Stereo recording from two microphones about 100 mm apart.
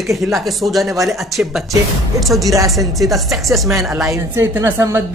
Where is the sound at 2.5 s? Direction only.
35° right (ahead or behind).